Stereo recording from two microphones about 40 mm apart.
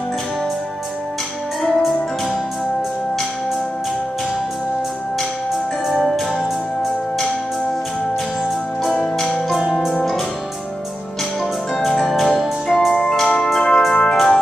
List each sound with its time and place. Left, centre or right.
5.9 s music: centre
8.9 s music: centre
9.6 s music: centre
11.7 s music: centre
13.5 s organ: centre
14.1 s music: centre